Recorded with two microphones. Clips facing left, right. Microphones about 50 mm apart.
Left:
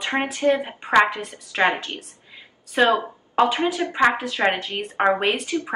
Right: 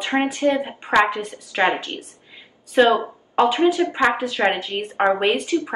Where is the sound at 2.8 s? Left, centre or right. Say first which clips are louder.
Right 3 dB; centre.